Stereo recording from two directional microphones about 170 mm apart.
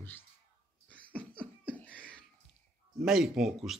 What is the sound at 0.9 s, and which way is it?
Cough, 10° left (ahead or behind).